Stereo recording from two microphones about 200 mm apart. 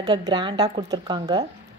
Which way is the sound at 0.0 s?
20° right (ahead or behind).